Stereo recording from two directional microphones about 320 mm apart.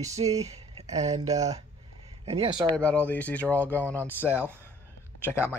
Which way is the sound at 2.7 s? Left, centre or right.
Centre.